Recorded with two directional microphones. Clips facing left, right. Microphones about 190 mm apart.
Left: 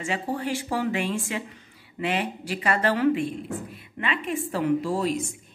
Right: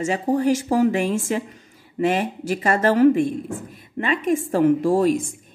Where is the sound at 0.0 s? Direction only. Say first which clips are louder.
Right 8 dB; 40° right (ahead or behind).